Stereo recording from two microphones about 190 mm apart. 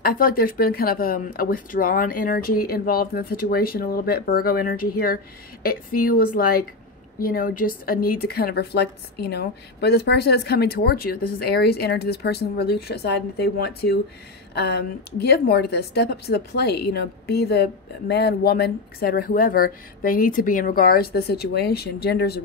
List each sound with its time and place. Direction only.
0.0 s a woman's voice: 50° left (ahead or behind)